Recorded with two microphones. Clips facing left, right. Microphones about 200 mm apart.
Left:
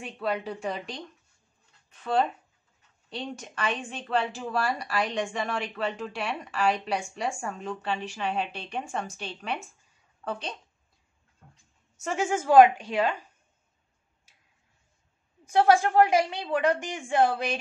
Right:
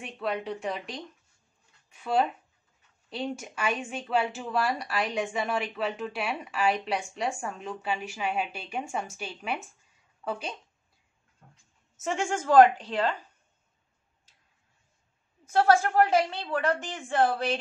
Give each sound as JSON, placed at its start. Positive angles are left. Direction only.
{"t": 0.0, "sound": "speech", "side_deg": 0}
{"t": 3.1, "sound": "speech", "side_deg": -5}
{"t": 12.0, "sound": "a woman's voice", "side_deg": 5}
{"t": 14.3, "sound": "tick-tock", "side_deg": 10}
{"t": 15.4, "sound": "a woman's voice", "side_deg": 15}